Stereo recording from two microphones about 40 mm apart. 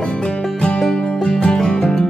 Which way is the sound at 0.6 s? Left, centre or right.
Centre.